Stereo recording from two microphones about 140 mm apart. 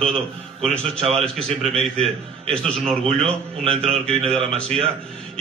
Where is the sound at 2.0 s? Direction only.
45° right (ahead or behind).